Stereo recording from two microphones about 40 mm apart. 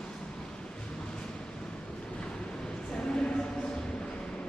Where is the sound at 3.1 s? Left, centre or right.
Centre.